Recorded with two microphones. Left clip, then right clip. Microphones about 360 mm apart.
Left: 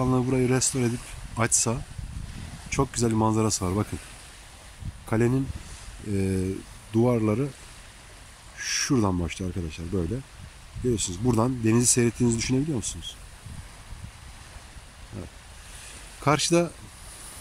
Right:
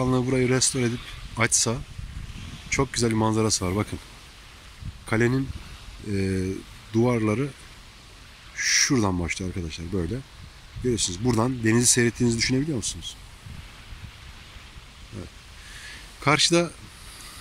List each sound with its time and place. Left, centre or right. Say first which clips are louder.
0.0 s speech: right 1 dB; centre
5.0 s speech: right 2 dB; centre
8.5 s speech: right 4 dB; centre
16.2 s speech: right 2 dB; centre